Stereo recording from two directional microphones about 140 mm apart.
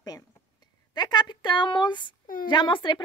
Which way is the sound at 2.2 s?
80° left.